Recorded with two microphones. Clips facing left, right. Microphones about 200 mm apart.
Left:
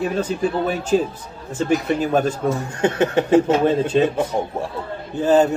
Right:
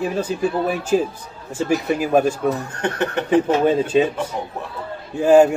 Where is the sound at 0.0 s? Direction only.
10° right (ahead or behind).